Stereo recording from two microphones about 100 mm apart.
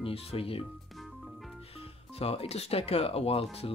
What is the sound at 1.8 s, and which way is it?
Speech, 80° left.